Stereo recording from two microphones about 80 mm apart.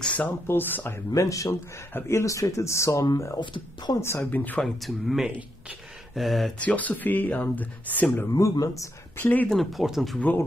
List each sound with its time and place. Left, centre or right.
0.0 s speech: centre
1.1 s speech: left
1.5 s speech: left
3.3 s speech: left
4.0 s speech: left
4.3 s speech: left
4.6 s speech: centre
6.6 s speech: centre
8.3 s speech: left
9.1 s speech: left
9.5 s speech: centre